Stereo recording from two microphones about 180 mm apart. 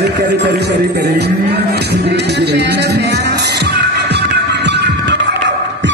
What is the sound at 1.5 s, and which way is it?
Music, 65° right (ahead or behind).